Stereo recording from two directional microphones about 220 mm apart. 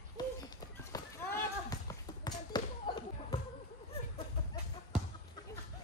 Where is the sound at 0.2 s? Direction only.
15° left (ahead or behind).